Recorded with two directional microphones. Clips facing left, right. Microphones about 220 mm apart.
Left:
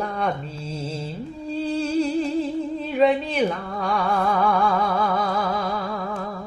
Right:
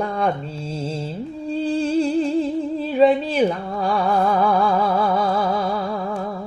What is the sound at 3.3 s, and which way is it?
Music, 35° right (ahead or behind).